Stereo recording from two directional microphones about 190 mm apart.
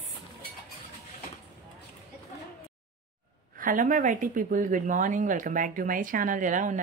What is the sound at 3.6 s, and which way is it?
A woman's voice, 45° right (ahead or behind).